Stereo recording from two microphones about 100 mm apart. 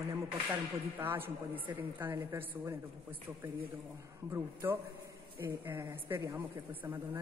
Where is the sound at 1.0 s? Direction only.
20° right (ahead or behind).